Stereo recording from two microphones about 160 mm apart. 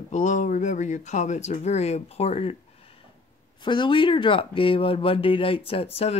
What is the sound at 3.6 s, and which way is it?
Speech, 30° left (ahead or behind).